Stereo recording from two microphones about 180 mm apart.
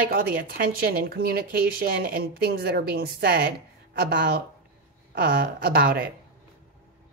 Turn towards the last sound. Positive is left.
turn(degrees=-55)  # may be behind; listen again after turning